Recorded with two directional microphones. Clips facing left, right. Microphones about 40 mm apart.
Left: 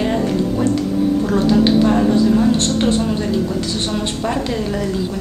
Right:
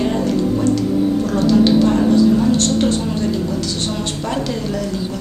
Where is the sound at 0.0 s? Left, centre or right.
Centre.